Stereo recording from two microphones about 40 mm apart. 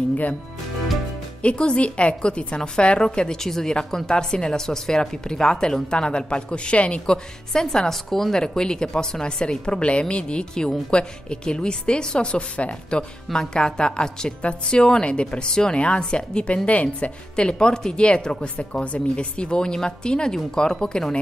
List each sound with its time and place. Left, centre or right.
1.4 s a woman's voice: left; by 8.4 s centre
8.4 s a woman's voice: centre
13.3 s a woman's voice: centre